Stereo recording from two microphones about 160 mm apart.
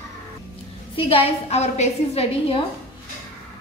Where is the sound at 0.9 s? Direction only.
35° left (ahead or behind).